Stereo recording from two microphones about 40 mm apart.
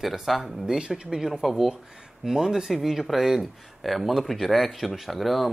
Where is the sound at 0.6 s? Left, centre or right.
Right.